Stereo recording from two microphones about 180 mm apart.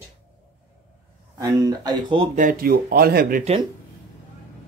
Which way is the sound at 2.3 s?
50° right (ahead or behind).